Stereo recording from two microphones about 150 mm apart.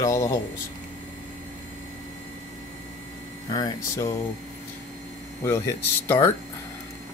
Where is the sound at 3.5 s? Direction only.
25° left (ahead or behind).